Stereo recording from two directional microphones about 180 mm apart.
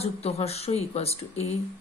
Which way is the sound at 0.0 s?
35° left (ahead or behind).